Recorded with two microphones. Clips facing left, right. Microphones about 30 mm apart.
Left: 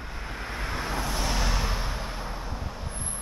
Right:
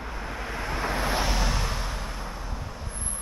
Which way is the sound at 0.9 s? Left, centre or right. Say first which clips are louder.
Right 5 dB; right.